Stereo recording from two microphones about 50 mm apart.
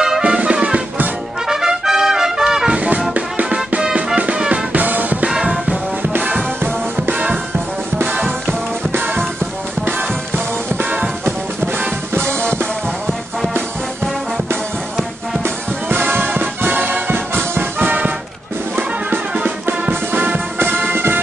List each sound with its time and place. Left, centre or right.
0.0 s music: centre
1.5 s brass instrument: centre
3.2 s music: right
4.5 s drum kit: right
5.3 s music: centre
6.6 s music: right
8.9 s music: right
12.2 s music: centre
16.0 s music: right
19.4 s music: right